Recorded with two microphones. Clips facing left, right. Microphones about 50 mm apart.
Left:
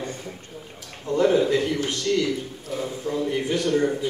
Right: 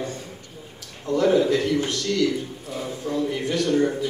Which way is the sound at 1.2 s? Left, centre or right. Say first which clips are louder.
Even; centre.